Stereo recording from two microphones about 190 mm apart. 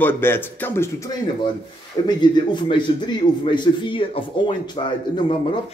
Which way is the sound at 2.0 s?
25° left (ahead or behind).